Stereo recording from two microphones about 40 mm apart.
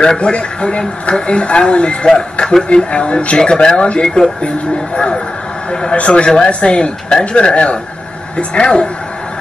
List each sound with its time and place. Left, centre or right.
0.0 s speech: left